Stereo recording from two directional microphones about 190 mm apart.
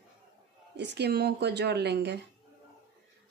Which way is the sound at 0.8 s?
60° right (ahead or behind).